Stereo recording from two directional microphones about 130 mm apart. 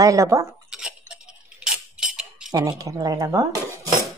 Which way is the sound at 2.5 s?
30° right (ahead or behind).